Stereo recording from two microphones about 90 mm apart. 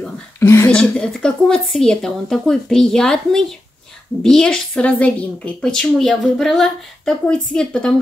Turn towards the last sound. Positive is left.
turn(degrees=10)  # may be behind; listen again after turning